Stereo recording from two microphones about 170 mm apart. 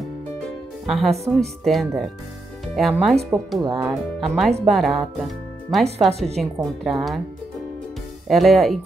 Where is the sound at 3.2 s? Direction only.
Centre (ahead or behind).